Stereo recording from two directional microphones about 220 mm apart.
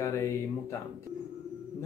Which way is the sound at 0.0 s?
15° left (ahead or behind).